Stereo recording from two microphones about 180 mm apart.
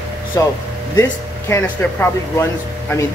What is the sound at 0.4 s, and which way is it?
Speech, 20° left (ahead or behind).